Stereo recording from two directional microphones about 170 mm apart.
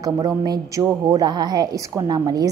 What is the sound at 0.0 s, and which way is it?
A woman's voice, 20° right (ahead or behind).